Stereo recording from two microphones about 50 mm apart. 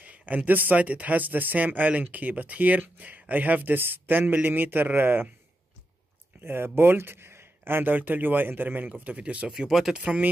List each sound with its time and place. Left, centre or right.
0.0 s speech: right
6.4 s speech: right
9.5 s speech: centre
9.9 s speech: right